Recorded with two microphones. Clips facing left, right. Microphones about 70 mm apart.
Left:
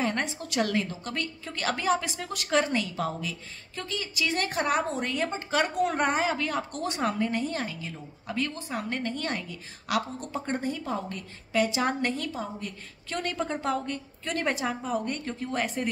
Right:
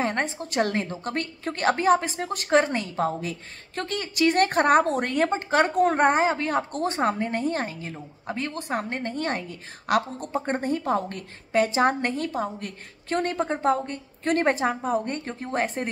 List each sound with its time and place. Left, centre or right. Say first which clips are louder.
0.0 s a woman's voice: right 3 dB; right
8.5 s a woman's voice: right 6 dB; right
8.8 s a woman's voice: right 3 dB; right